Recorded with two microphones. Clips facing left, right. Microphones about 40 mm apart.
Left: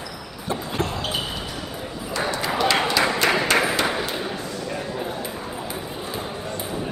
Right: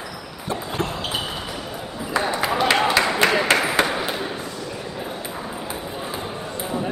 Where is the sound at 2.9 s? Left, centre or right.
Right.